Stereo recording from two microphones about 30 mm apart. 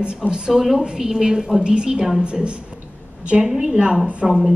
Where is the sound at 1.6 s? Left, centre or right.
Right.